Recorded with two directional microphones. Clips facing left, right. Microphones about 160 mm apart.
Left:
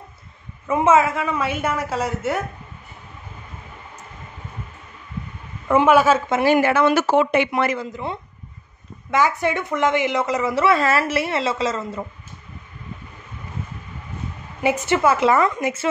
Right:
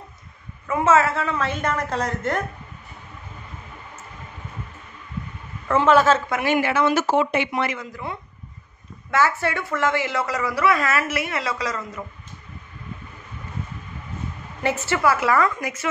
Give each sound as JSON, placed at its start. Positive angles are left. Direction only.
{"t": 0.7, "sound": "a woman's voice", "side_deg": 20}
{"t": 5.7, "sound": "a woman's voice", "side_deg": 15}
{"t": 6.4, "sound": "speech", "side_deg": 35}
{"t": 6.7, "sound": "speech", "side_deg": 60}
{"t": 7.7, "sound": "speech", "side_deg": 25}
{"t": 14.6, "sound": "speech", "side_deg": 15}